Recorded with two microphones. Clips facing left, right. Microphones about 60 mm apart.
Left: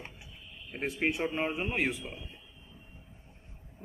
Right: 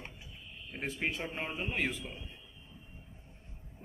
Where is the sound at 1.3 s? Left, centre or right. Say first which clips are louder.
Left 5 dB; left.